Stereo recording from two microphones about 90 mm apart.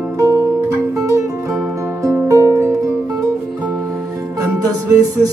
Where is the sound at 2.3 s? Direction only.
30° left (ahead or behind).